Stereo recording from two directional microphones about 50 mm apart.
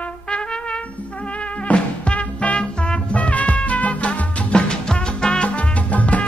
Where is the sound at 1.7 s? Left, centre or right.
Left.